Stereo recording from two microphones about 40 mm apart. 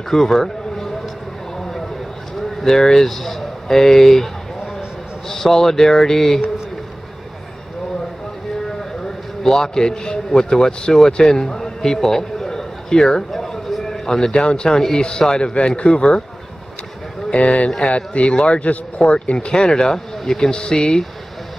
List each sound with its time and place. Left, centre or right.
0.1 s a sound: centre
2.6 s speech: centre
5.3 s a man's voice: centre
9.0 s a man's voice: centre
13.3 s a sound: centre
14.4 s speech: left
14.8 s a man's voice: centre; by 16.2 s left
17.3 s speech: left
17.6 s a man's voice: centre
17.9 s speech: left
19.5 s a man's voice: centre